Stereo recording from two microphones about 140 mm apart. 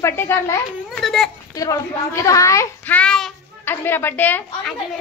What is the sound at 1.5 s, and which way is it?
A woman's voice, 25° left (ahead or behind).